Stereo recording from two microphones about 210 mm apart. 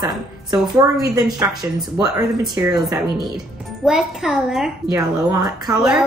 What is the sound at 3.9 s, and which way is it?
Speech, centre (ahead or behind).